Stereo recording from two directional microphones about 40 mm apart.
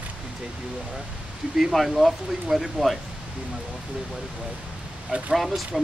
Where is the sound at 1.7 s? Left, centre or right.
Centre.